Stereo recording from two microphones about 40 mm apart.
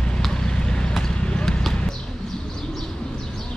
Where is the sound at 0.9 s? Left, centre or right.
Centre.